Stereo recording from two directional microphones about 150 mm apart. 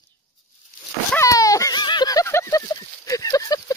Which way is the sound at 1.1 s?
25° left (ahead or behind).